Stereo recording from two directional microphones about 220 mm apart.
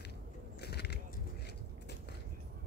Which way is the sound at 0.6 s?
50° left (ahead or behind).